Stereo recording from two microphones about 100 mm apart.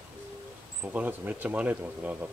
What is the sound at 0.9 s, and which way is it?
Speech, 15° right (ahead or behind).